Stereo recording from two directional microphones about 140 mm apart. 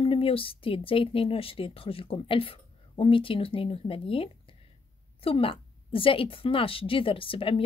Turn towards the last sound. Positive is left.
turn(degrees=40)  # may be behind; listen again after turning